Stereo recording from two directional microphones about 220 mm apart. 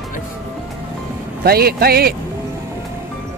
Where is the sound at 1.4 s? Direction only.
45° right (ahead or behind).